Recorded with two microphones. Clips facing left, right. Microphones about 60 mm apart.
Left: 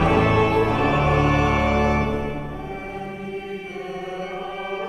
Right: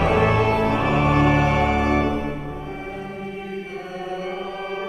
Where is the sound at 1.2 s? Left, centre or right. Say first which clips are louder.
Right 2 dB; right.